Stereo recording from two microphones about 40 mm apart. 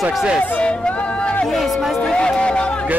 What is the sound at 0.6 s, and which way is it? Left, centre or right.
Speech, left.